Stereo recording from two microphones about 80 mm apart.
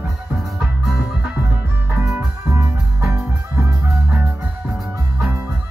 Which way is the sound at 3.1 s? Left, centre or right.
Right.